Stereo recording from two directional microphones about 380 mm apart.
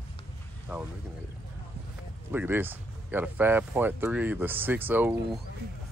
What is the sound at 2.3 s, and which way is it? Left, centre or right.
Speech, centre.